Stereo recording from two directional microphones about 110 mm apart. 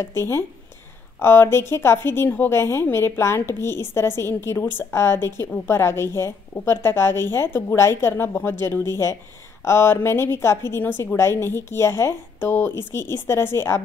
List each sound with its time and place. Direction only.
0.0 s a woman's voice: 25° left (ahead or behind)